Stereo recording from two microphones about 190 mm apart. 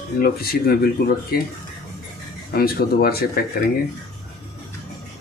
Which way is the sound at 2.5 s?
55° left (ahead or behind).